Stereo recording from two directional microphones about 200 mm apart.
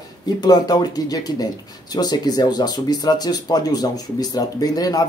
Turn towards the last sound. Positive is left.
turn(degrees=20)  # may be behind; listen again after turning